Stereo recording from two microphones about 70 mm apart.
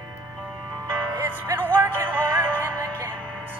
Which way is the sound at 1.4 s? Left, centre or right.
Right.